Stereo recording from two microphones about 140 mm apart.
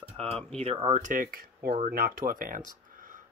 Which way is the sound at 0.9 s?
70° right (ahead or behind).